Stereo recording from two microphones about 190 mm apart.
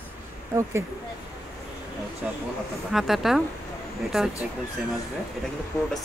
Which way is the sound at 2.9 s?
Centre (ahead or behind).